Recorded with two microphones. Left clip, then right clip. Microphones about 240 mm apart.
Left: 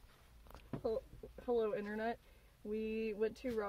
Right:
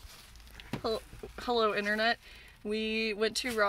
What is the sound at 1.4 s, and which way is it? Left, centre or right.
Speech, right.